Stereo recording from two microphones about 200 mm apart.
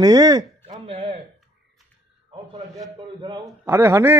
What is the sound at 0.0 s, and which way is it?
Speech, 20° right (ahead or behind).